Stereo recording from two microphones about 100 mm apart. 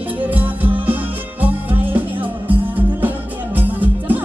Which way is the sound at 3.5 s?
15° right (ahead or behind).